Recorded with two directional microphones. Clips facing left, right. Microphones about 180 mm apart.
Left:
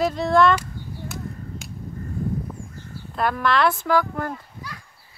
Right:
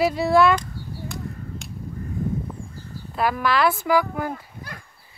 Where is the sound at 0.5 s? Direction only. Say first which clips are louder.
Even; 5° left (ahead or behind).